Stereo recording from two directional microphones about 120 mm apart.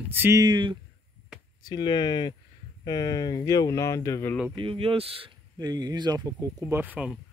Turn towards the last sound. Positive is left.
turn(degrees=-10)  # may be behind; listen again after turning